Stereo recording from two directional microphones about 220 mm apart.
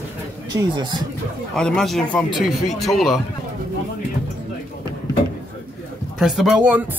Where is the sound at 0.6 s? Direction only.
20° right (ahead or behind).